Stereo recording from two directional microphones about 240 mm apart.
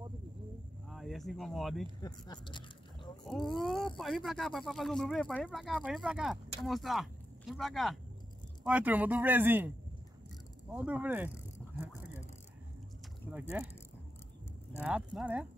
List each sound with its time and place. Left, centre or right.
0.8 s speech: centre
2.0 s speech: centre
3.3 s speech: centre
10.7 s speech: centre
13.3 s speech: centre
14.8 s speech: centre